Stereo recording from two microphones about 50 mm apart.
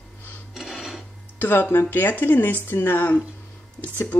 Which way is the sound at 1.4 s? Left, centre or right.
Left.